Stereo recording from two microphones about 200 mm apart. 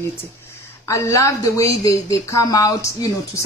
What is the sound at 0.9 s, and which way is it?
A woman's voice, 15° left (ahead or behind).